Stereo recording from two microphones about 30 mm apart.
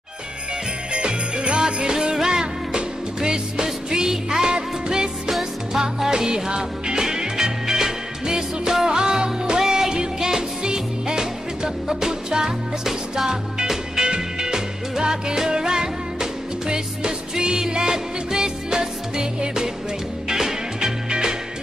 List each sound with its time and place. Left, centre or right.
0.9 s jingle bell: right
2.2 s music: right
13.7 s music: right